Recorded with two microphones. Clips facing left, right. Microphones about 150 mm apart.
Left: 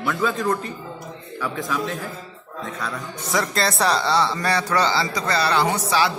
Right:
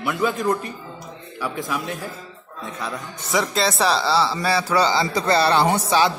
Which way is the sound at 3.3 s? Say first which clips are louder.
Right 1 dB; centre (ahead or behind).